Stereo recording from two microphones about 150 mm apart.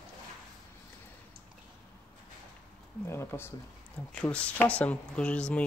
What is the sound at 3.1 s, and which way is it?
Speech, 15° left (ahead or behind).